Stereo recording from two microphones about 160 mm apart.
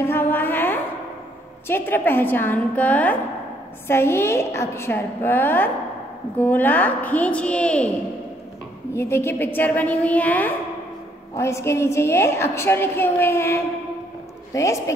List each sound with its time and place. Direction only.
0.0 s a sound: 15° left (ahead or behind)
1.7 s a woman's voice: 15° left (ahead or behind)
8.9 s a woman's voice: 15° left (ahead or behind)